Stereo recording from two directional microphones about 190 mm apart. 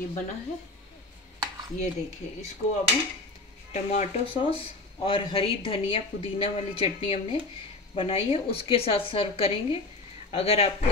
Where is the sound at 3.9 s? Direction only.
30° left (ahead or behind).